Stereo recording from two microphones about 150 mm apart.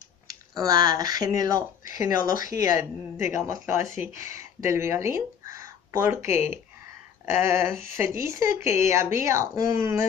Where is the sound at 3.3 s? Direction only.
20° right (ahead or behind).